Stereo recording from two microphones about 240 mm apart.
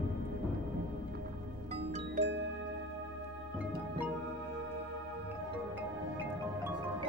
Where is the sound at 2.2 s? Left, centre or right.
Right.